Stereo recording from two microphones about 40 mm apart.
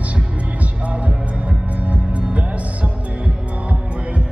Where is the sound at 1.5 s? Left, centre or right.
Right.